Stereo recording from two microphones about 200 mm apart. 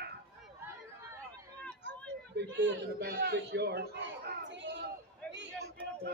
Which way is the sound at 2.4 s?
60° right (ahead or behind).